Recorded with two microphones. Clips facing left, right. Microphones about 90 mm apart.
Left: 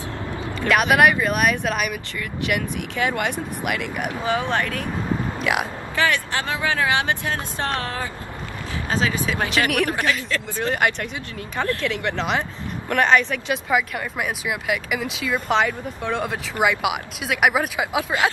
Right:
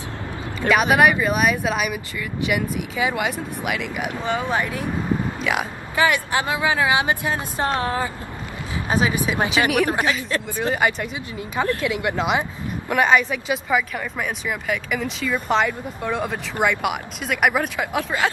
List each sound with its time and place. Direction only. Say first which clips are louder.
0.7 s speech: even; centre (ahead or behind)
4.5 s speech: even; 10° right (ahead or behind)
5.4 s speech: left 1 dB; centre (ahead or behind)
5.9 s speech: right 3 dB; 15° right (ahead or behind)
9.5 s speech: right 2 dB; centre (ahead or behind)